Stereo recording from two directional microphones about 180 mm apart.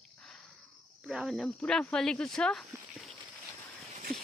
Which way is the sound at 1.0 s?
Centre (ahead or behind).